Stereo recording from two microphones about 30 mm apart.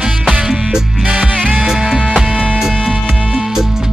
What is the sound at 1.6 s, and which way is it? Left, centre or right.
Music, centre.